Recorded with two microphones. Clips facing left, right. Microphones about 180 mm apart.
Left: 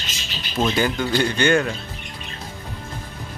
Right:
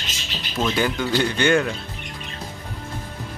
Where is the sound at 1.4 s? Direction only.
15° right (ahead or behind).